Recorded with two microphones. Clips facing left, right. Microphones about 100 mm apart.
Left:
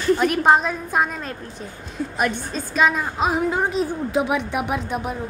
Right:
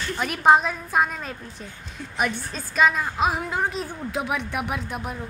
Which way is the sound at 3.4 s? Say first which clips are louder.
Left 6 dB; 25° left (ahead or behind).